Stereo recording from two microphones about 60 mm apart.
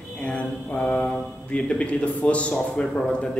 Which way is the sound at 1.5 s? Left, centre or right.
Left.